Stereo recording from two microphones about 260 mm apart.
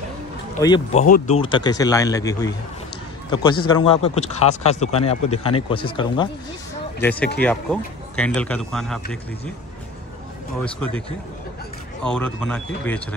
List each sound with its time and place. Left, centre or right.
0.6 s speech: centre
1.0 s speech: left
7.0 s speech: centre
12.0 s speech: centre